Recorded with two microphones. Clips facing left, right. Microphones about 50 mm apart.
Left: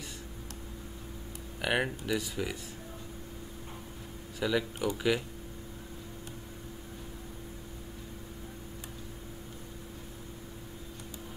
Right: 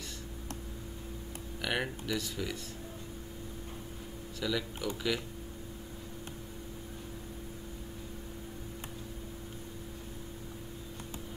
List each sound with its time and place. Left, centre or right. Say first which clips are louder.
1.6 s speech: left 4 dB; centre
4.4 s speech: left 4 dB; centre